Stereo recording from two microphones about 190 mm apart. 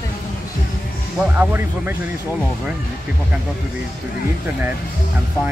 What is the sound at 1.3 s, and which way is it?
Speech, 10° right (ahead or behind).